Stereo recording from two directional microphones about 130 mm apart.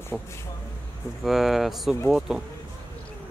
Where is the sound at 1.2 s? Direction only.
Centre (ahead or behind).